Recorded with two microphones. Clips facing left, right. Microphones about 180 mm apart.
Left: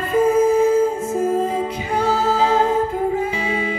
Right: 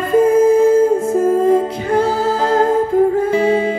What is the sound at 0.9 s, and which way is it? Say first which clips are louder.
Music: right 6 dB; 55° right (ahead or behind).